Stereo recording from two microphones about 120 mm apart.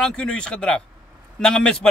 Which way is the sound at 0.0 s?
5° left (ahead or behind).